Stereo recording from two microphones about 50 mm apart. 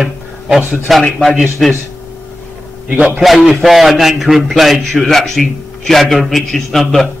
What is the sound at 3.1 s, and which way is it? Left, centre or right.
A man's voice, centre.